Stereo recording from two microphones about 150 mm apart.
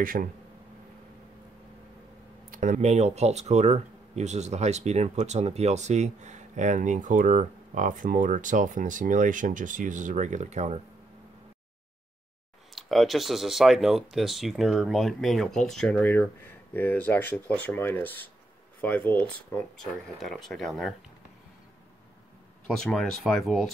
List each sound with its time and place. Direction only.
0.0 s speech: 65° right (ahead or behind)
2.5 s a sound: 65° right (ahead or behind)
2.8 s speech: 45° right (ahead or behind)
12.7 s speech: centre (ahead or behind)
22.8 s speech: 5° left (ahead or behind)